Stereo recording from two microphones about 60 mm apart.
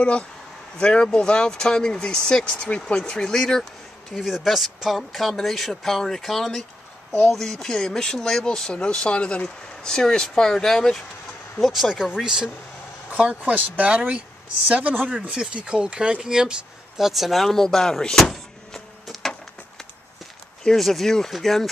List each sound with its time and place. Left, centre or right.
0.7 s speech: centre
4.1 s speech: centre; by 15.0 s right
15.3 s speech: centre
18.3 s power windows: centre
20.7 s speech: centre